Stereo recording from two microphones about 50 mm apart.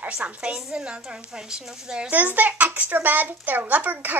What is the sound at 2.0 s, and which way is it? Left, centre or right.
Speech, right.